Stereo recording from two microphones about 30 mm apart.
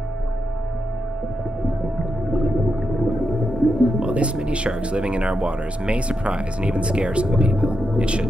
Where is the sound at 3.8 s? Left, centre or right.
Right.